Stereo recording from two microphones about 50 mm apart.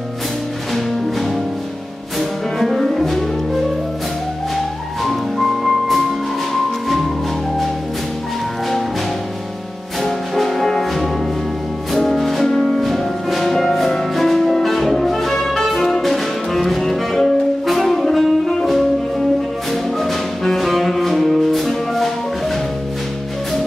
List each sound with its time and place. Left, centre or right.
2.1 s music: centre
5.0 s music: centre
10.0 s music: centre